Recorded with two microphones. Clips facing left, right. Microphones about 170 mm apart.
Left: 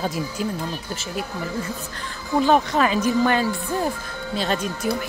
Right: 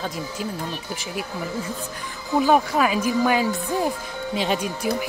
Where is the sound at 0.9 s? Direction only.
10° right (ahead or behind).